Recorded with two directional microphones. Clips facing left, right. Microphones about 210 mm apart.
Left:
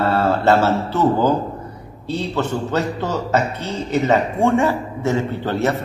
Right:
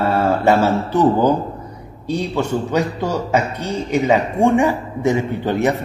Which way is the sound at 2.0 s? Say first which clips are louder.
Right 2 dB; 15° right (ahead or behind).